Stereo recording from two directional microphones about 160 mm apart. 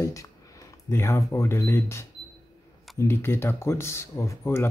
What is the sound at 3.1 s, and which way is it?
Speech, 15° left (ahead or behind).